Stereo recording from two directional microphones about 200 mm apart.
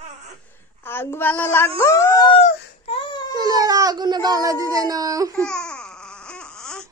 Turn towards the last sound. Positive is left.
turn(degrees=5)  # may be behind; listen again after turning